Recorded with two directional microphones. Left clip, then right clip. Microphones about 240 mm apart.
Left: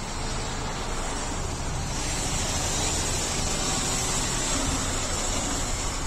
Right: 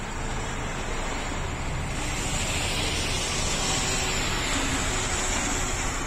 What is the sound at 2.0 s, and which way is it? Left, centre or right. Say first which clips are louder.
Vehicle: even; left.